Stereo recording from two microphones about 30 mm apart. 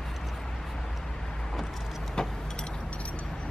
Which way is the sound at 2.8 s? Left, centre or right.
Left.